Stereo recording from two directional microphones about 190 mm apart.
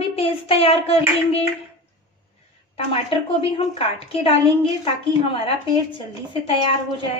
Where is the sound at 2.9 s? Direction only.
30° left (ahead or behind).